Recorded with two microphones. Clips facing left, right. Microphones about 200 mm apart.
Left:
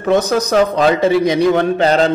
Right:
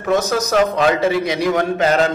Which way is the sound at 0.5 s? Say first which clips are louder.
Left 2 dB; 30° left (ahead or behind).